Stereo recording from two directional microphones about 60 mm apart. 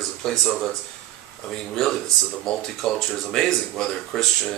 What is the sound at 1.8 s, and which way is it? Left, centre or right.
A man's voice, centre.